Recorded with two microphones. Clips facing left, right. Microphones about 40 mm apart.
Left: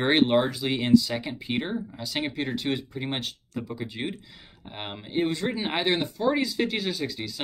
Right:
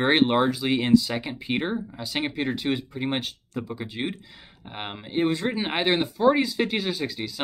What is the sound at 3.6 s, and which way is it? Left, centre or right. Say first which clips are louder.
Speech: right 2 dB; right.